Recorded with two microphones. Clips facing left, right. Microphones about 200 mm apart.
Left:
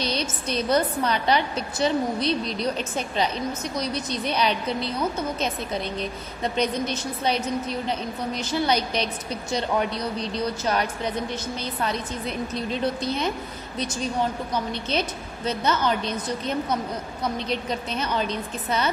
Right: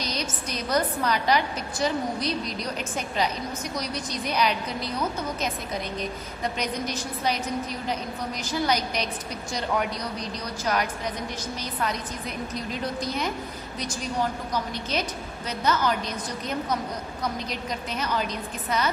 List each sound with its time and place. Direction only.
0.0 s a woman's voice: 30° left (ahead or behind)
3.7 s a woman's voice: 25° left (ahead or behind)
5.9 s a woman's voice: 25° left (ahead or behind)
14.5 s a woman's voice: 25° left (ahead or behind)